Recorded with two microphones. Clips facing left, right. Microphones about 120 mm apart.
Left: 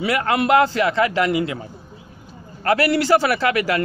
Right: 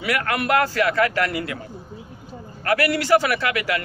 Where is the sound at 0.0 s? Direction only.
25° left (ahead or behind).